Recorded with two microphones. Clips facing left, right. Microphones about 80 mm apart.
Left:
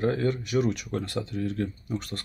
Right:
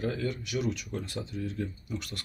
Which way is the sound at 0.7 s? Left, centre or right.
Left.